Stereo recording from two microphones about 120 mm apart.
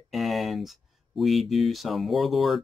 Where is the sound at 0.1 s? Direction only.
Centre (ahead or behind).